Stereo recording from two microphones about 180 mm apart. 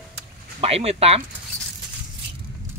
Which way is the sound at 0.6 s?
35° right (ahead or behind).